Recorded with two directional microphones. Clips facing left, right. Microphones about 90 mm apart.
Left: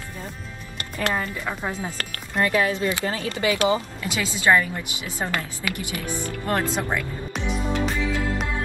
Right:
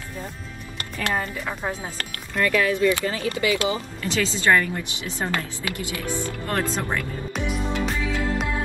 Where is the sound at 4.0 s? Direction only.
10° left (ahead or behind).